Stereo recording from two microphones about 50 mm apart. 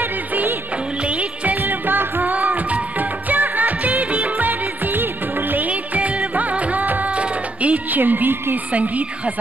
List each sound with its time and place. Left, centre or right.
1.0 s music: right
2.3 s music: right